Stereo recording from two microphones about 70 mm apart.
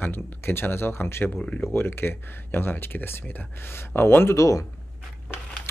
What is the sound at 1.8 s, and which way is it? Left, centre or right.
Speech, left.